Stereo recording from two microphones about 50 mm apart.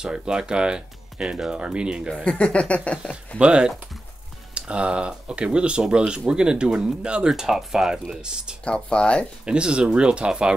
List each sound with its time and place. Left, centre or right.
0.0 s speech: centre
2.2 s speech: left
3.3 s speech: centre
7.3 s speech: centre
8.6 s speech: left
9.5 s speech: centre